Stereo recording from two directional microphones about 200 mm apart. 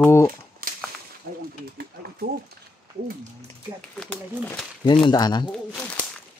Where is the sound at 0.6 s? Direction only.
45° right (ahead or behind).